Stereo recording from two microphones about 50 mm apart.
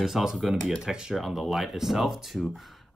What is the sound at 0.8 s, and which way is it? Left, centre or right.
Speech, centre.